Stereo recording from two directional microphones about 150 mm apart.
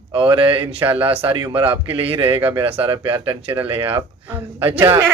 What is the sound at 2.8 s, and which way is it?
Speech, 35° right (ahead or behind).